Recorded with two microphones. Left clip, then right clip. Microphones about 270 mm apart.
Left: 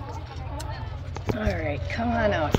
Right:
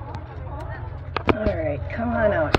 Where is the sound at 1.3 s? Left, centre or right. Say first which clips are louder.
Right 4 dB; left.